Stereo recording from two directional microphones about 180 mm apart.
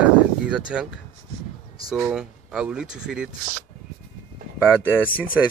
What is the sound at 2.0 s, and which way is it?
Speech, 5° right (ahead or behind).